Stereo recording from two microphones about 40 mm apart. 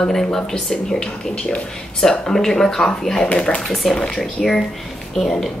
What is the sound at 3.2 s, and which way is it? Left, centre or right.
Speech, left.